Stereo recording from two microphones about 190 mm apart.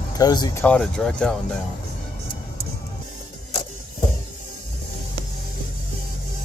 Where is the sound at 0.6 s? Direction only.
5° left (ahead or behind).